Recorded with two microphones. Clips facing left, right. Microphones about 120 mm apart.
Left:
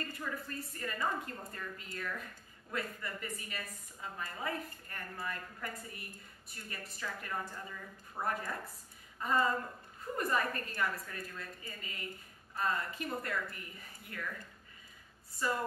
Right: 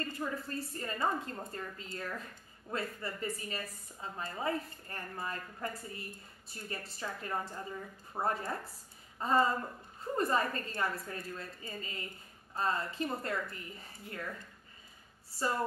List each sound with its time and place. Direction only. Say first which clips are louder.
0.0 s a woman's voice: right 3 dB; 30° right (ahead or behind)